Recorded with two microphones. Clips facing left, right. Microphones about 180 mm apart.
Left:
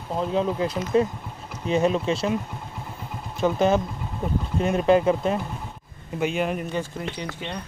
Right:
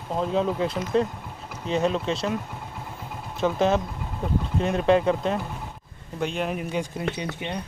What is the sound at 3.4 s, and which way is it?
Speech, centre (ahead or behind).